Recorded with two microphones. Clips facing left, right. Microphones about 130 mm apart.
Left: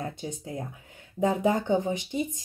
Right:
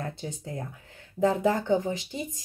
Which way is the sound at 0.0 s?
20° left (ahead or behind).